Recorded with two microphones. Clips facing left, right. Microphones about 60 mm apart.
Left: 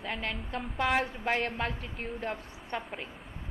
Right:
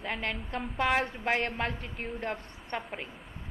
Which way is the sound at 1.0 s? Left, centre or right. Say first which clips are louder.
Right 1 dB; right.